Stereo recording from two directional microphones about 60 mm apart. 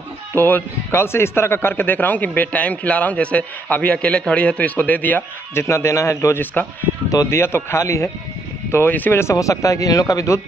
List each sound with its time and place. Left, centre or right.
0.3 s speech: left
0.9 s a man's voice: left
5.5 s speech: left
6.4 s a man's voice: left
7.2 s speech: left
8.8 s speech: left
9.2 s speech: left